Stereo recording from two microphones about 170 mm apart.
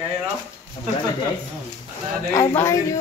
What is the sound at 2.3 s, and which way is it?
Speech, 15° left (ahead or behind).